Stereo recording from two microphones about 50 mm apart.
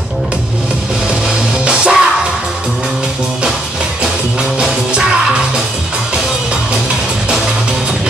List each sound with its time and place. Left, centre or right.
1.6 s music: centre
4.6 s music: centre